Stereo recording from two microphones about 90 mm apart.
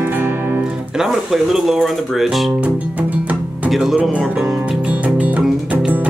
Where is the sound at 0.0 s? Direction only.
25° right (ahead or behind).